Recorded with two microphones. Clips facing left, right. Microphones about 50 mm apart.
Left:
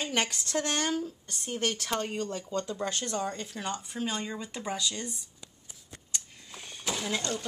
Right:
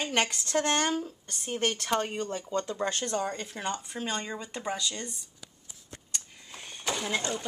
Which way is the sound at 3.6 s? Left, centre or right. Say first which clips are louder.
Right 1 dB; centre.